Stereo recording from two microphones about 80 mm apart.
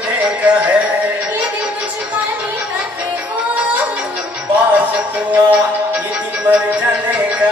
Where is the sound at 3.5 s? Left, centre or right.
Centre.